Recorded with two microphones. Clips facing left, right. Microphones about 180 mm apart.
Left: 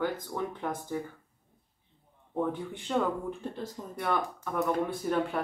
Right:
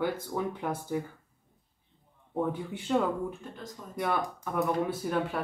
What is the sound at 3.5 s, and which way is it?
Speech, 30° left (ahead or behind).